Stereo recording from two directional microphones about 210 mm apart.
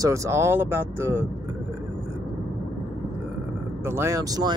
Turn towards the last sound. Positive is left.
turn(degrees=-20)  # may be behind; listen again after turning